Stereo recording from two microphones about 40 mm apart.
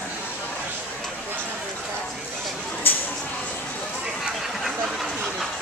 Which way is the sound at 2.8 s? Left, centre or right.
Left.